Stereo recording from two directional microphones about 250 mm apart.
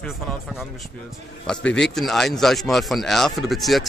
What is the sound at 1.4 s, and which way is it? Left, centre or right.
Speech, centre.